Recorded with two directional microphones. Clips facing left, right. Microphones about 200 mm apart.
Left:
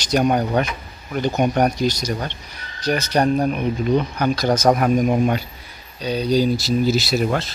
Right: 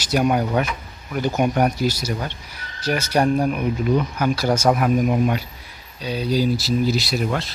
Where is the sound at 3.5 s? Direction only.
30° left (ahead or behind).